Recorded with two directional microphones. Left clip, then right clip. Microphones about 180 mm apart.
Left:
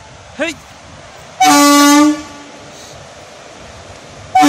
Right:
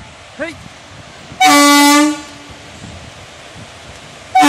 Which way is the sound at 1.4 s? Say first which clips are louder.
Even; 20° left (ahead or behind).